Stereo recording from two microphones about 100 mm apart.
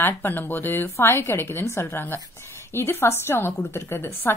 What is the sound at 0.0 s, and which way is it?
A woman's voice, 20° left (ahead or behind).